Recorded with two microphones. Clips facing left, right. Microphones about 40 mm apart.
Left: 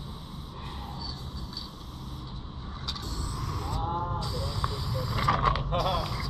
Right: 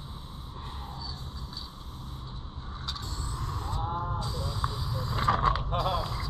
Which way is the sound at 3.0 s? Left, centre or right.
Right.